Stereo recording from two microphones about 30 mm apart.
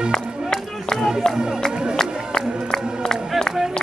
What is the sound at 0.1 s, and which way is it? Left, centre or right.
Chop, centre.